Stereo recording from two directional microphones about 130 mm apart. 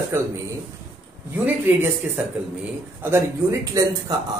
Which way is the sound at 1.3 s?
15° right (ahead or behind).